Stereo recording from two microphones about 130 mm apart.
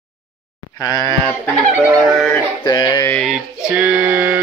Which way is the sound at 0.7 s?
30° left (ahead or behind).